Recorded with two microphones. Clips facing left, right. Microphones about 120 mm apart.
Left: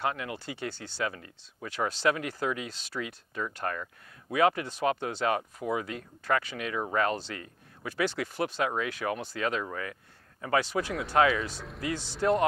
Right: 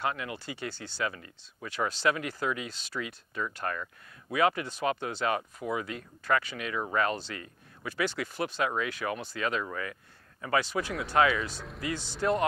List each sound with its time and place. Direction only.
0.0 s speech: 45° left (ahead or behind)
10.9 s speech: centre (ahead or behind)
12.2 s a man's voice: 25° left (ahead or behind)